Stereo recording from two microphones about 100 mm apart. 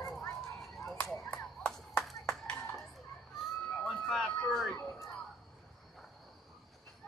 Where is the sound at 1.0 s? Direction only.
5° left (ahead or behind).